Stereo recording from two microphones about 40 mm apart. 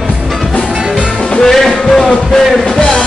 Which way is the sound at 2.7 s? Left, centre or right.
Centre.